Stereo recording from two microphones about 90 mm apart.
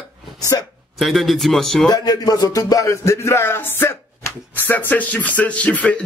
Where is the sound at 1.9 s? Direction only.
45° left (ahead or behind).